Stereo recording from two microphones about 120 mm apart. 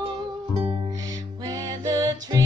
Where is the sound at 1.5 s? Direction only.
30° right (ahead or behind).